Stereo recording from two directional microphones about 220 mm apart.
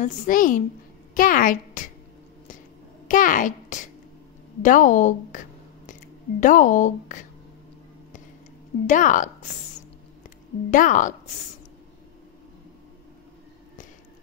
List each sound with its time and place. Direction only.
0.0 s a woman's voice: 35° left (ahead or behind)
3.1 s a child's voice: 40° left (ahead or behind)
6.4 s a woman's voice: 35° left (ahead or behind)
8.8 s a woman's voice: 35° left (ahead or behind)
10.7 s a woman's voice: 35° left (ahead or behind)